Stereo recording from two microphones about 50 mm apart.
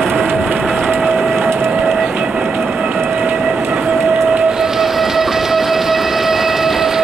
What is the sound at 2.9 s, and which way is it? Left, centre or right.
Train, right.